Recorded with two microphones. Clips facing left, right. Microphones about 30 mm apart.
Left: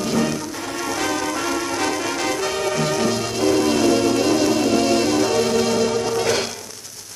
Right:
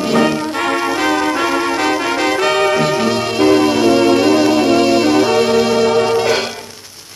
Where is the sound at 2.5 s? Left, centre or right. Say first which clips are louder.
Right 8 dB; right.